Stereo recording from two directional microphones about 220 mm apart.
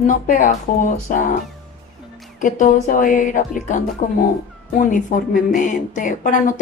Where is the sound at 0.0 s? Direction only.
35° left (ahead or behind).